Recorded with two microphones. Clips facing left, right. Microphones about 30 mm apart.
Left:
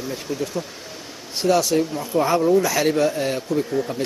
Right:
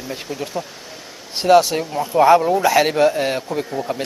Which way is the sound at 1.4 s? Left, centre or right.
Right.